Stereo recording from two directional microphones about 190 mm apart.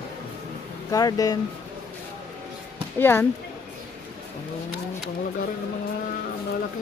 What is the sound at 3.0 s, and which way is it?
Speech, 10° left (ahead or behind).